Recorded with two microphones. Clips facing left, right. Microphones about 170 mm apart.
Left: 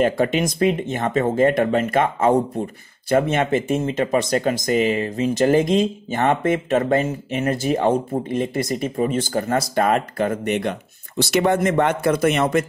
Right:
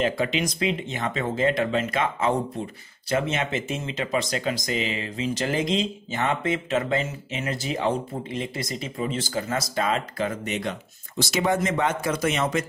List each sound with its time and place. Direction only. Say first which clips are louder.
0.0 s speech: left 6 dB; 50° left (ahead or behind)